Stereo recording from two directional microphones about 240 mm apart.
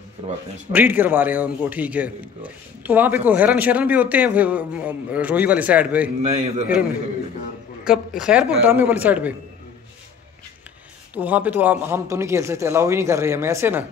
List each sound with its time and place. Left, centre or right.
0.2 s speech: right
0.7 s a man's voice: centre
6.2 s a man's voice: right
7.9 s a man's voice: centre
11.1 s a man's voice: centre